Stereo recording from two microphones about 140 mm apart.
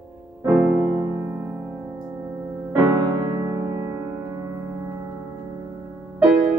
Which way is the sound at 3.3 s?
25° right (ahead or behind).